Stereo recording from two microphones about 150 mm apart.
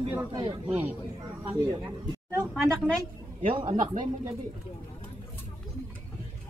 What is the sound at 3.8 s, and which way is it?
Speech, 50° right (ahead or behind).